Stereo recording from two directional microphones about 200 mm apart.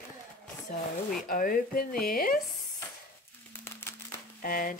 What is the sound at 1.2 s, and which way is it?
A woman's voice, 45° left (ahead or behind).